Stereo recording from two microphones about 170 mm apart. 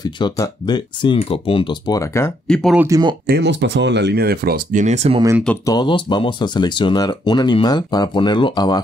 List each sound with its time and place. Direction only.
0.0 s speech: 25° left (ahead or behind)
2.4 s speech: 5° left (ahead or behind)
2.9 s speech: 25° right (ahead or behind)
3.3 s speech: 85° right; by 5.2 s 40° right (ahead or behind)
5.7 s speech: 25° left (ahead or behind)